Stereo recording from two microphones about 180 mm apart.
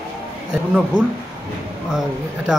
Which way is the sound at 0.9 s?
25° right (ahead or behind).